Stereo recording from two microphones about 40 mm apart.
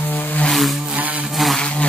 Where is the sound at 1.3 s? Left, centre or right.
Centre.